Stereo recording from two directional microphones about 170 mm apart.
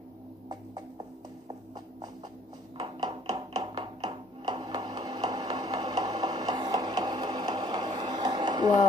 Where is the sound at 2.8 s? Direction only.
25° right (ahead or behind).